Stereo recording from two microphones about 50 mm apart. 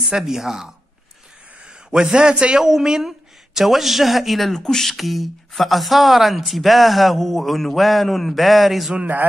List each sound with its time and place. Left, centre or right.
0.0 s speech: centre
4.6 s speech: centre